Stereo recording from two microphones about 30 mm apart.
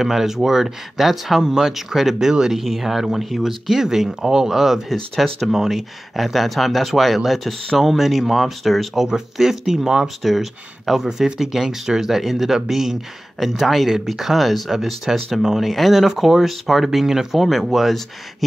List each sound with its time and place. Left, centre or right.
0.0 s speech: centre
5.1 s speech: centre
9.0 s speech: centre
17.4 s speech: centre